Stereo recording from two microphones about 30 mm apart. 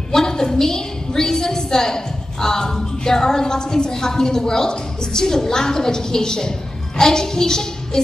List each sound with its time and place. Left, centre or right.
0.1 s a woman's voice: centre